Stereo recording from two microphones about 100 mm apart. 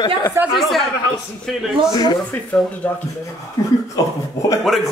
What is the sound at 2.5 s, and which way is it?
Speech, 10° left (ahead or behind).